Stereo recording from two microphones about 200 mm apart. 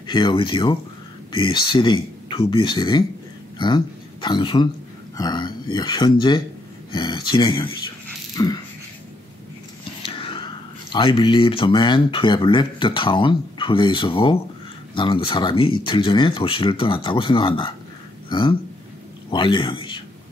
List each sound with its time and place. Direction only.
0.0 s speech: 25° left (ahead or behind)
10.0 s speech: 25° left (ahead or behind)